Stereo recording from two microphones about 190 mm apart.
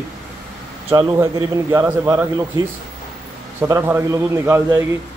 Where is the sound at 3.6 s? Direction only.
10° right (ahead or behind).